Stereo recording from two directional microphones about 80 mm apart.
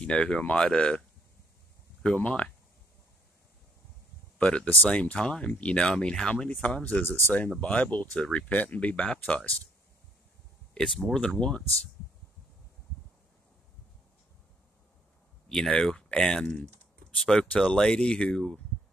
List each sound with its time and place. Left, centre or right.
0.0 s speech: centre
2.1 s speech: centre
4.4 s speech: centre
10.7 s speech: centre
15.4 s speech: centre